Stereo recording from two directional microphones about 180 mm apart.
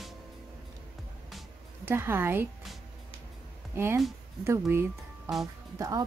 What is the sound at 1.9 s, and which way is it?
Speech, 15° right (ahead or behind).